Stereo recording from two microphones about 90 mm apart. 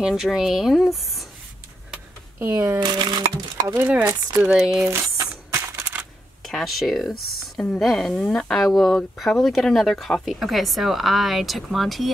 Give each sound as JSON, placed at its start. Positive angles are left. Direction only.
{"t": 0.0, "sound": "speech", "side_deg": -5}
{"t": 2.5, "sound": "speech", "side_deg": -35}
{"t": 2.8, "sound": "speech", "side_deg": -55}
{"t": 3.6, "sound": "speech", "side_deg": -30}
{"t": 4.5, "sound": "speech", "side_deg": -5}
{"t": 4.8, "sound": "speech", "side_deg": -35}
{"t": 5.5, "sound": "a sound", "side_deg": -35}
{"t": 6.4, "sound": "speech", "side_deg": 0}